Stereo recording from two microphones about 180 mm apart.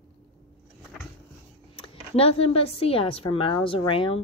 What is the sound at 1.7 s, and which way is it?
Speech, 30° left (ahead or behind).